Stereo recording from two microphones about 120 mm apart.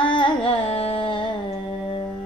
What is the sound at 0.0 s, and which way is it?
Carnatic music, 45° left (ahead or behind).